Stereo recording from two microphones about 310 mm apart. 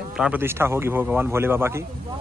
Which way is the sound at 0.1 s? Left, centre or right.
Centre.